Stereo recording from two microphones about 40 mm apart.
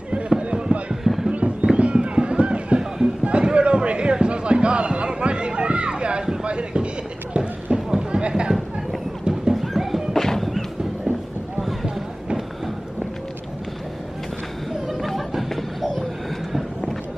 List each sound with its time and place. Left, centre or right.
0.4 s a sound: right
1.0 s a sound: centre
1.3 s fireworks: right
1.8 s music: right
3.3 s a sound: right
8.2 s chatter: right
9.5 s music: centre
10.1 s music: centre
14.7 s chatter: centre